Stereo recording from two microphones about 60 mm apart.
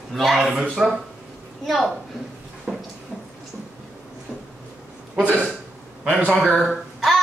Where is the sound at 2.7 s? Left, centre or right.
Centre.